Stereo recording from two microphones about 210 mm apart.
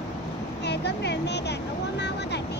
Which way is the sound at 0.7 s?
55° left (ahead or behind).